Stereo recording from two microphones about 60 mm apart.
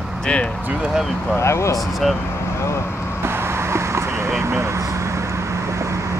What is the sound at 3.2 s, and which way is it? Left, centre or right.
Vehicle, right.